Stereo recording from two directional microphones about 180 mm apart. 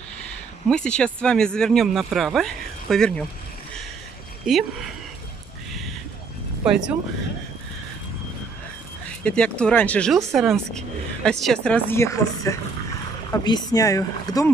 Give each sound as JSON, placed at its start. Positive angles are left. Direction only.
{"t": 0.7, "sound": "speech", "side_deg": 5}
{"t": 4.5, "sound": "speech", "side_deg": 0}
{"t": 6.6, "sound": "speech", "side_deg": -5}
{"t": 9.2, "sound": "speech", "side_deg": 5}
{"t": 11.2, "sound": "speech", "side_deg": 5}